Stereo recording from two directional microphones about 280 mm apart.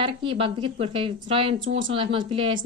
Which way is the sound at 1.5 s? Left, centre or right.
Right.